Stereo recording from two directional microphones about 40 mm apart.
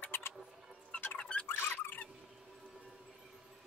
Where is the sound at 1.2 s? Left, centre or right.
Left.